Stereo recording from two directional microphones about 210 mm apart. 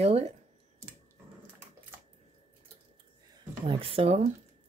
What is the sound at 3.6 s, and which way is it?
Speech, 25° right (ahead or behind).